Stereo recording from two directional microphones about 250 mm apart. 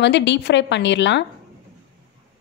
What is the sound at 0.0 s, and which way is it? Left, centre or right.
A woman's voice, left.